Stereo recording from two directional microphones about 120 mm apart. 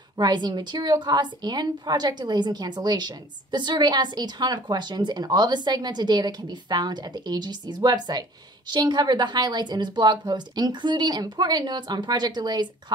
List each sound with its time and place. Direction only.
0.2 s a woman's voice: 35° right (ahead or behind)